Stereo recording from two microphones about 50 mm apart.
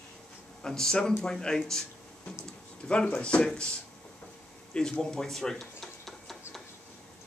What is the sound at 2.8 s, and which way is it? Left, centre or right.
Speech, left.